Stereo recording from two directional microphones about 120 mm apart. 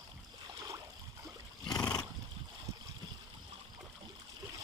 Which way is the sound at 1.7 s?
35° left (ahead or behind).